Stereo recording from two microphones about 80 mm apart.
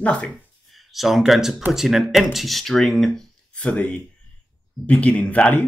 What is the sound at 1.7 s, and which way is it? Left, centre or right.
Speech, centre.